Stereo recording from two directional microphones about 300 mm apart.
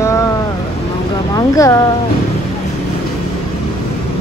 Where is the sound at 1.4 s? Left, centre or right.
Centre.